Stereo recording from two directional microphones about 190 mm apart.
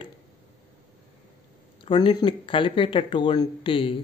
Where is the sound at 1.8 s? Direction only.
25° left (ahead or behind).